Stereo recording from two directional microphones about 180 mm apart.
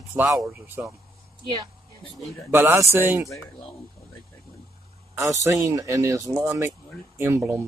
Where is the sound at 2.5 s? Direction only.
15° right (ahead or behind).